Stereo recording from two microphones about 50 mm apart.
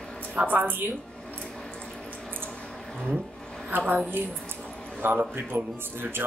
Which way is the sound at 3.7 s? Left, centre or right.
Right.